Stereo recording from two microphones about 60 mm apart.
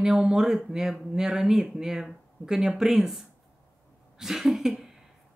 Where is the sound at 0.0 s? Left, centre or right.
Centre.